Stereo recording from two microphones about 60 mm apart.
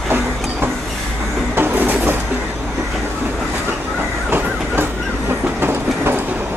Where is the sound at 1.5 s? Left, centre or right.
Right.